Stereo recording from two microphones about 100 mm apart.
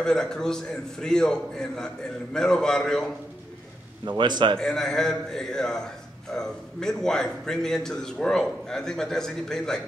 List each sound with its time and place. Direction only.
0.0 s a man's voice: 5° left (ahead or behind)
4.2 s a man's voice: 50° right (ahead or behind)
4.6 s a man's voice: 5° left (ahead or behind)